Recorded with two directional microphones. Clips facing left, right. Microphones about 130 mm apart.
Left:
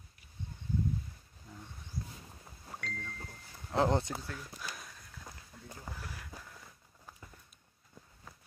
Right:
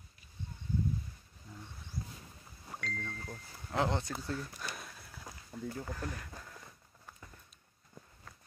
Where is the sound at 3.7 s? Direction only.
35° left (ahead or behind).